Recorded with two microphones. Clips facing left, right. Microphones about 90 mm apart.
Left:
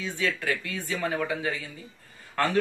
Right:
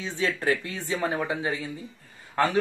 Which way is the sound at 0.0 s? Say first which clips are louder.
Right 2 dB; 30° right (ahead or behind).